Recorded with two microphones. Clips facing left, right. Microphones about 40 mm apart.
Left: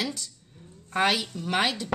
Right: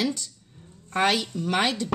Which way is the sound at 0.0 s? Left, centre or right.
Centre.